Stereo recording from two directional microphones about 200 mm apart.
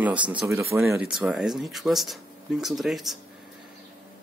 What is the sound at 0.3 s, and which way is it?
Speech, 10° right (ahead or behind).